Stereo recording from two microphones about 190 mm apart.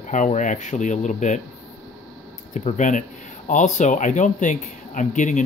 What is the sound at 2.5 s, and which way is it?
Speech, 40° left (ahead or behind).